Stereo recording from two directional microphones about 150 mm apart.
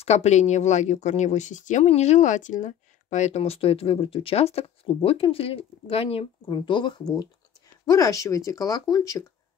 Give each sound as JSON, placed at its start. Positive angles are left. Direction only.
{"t": 0.0, "sound": "speech", "side_deg": 45}